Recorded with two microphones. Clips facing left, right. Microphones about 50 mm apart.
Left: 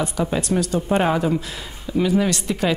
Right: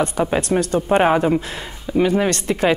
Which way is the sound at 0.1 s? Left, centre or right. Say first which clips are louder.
Right 3 dB; right.